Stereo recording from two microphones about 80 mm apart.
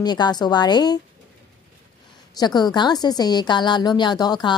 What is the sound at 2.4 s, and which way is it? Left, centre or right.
A woman's voice, left.